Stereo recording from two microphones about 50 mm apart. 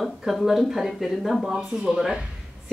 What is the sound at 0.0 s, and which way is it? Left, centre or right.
A woman's voice, centre.